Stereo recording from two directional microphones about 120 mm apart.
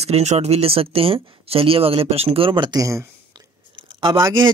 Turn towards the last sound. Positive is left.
turn(degrees=-35)  # may be behind; listen again after turning